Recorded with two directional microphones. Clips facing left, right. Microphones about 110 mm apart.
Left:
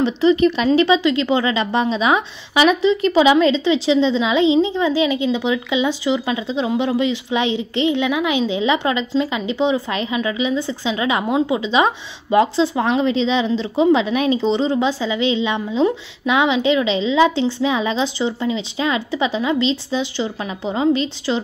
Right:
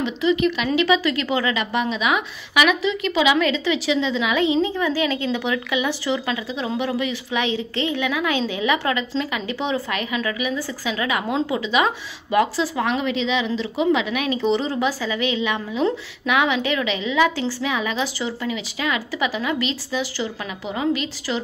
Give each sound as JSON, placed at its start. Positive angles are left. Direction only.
{"t": 0.0, "sound": "speech", "side_deg": 35}